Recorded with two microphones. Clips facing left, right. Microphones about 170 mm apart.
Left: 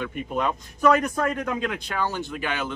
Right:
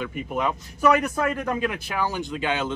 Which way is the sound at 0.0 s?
10° right (ahead or behind).